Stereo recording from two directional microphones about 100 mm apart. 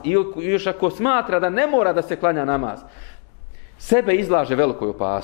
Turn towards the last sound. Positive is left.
turn(degrees=20)  # may be behind; listen again after turning